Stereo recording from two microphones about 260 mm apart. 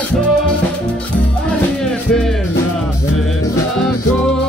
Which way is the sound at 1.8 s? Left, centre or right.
Centre.